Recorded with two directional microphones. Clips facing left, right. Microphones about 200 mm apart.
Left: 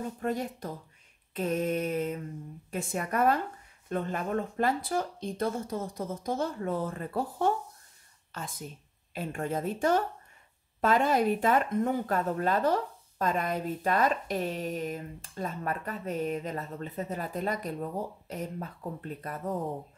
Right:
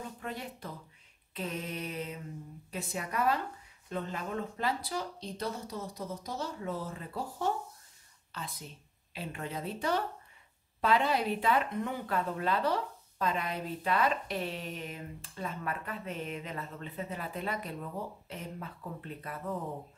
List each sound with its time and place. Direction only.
0.2 s speech: 45° left (ahead or behind)